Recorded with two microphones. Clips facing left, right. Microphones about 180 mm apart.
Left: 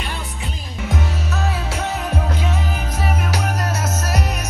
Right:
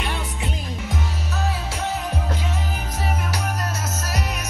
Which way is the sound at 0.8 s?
70° left (ahead or behind).